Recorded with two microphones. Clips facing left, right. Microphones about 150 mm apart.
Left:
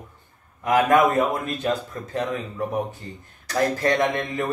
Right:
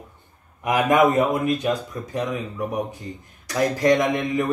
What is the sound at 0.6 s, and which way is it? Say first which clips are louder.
Speech: even; 15° right (ahead or behind).